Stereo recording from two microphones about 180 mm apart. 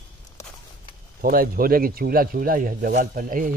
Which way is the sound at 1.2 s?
55° right (ahead or behind).